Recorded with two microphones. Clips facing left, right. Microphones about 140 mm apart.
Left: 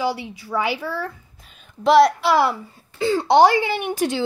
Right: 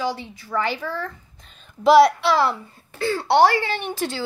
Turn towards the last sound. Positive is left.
turn(degrees=15)  # may be behind; listen again after turning